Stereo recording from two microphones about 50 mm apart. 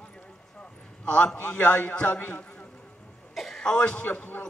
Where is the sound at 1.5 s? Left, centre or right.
Centre.